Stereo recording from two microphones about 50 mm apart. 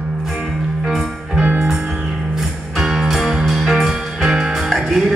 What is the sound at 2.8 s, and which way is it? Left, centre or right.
Music, centre.